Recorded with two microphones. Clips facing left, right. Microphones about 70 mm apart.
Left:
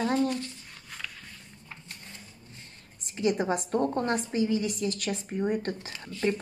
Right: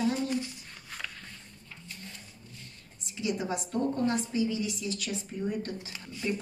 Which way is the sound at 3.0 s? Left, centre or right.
Left.